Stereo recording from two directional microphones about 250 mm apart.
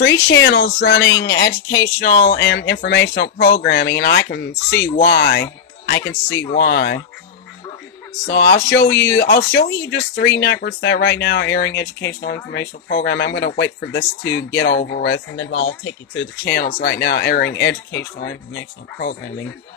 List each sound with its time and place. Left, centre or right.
0.0 s speech: left
8.3 s speech: left